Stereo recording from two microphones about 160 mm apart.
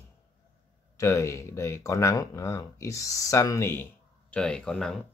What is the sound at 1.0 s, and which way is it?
Speech, 20° left (ahead or behind).